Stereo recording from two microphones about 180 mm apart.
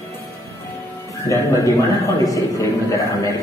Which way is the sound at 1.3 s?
20° left (ahead or behind).